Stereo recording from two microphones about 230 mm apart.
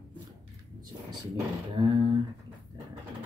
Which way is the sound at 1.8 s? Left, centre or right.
Centre.